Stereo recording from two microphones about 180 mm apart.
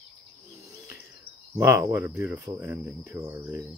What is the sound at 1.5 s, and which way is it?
Cricket, 15° right (ahead or behind).